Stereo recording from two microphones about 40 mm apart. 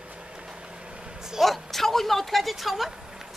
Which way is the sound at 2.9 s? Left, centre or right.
Centre.